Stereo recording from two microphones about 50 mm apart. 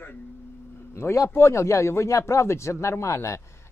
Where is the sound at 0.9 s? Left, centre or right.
Left.